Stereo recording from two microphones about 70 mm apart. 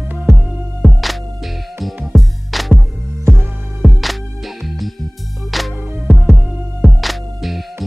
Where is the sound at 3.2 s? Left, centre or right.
Right.